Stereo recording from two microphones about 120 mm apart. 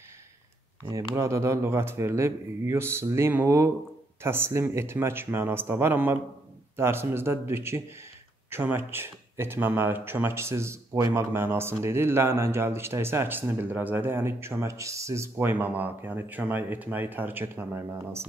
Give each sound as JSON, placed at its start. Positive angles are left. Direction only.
{"t": 0.8, "sound": "speech", "side_deg": -25}